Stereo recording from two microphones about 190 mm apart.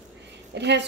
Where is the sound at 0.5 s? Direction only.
65° right (ahead or behind).